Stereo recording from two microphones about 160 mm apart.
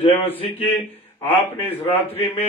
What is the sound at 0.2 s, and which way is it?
Speech, 35° left (ahead or behind).